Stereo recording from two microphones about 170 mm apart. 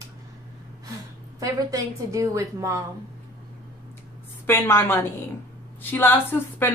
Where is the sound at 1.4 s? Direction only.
20° right (ahead or behind).